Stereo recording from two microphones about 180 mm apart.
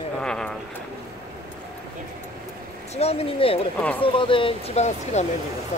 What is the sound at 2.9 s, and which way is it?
Speech, 35° left (ahead or behind).